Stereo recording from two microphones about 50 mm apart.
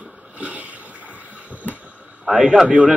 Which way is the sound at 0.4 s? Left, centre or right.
Right.